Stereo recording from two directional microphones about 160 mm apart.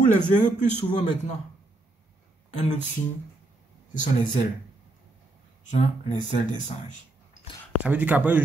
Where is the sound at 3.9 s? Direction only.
50° left (ahead or behind).